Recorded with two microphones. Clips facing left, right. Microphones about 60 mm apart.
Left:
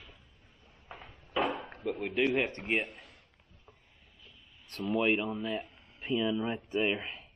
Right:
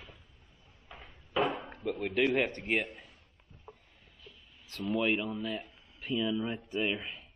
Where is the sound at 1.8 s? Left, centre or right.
Centre.